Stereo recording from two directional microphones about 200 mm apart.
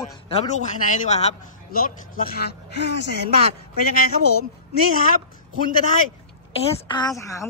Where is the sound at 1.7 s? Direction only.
45° left (ahead or behind).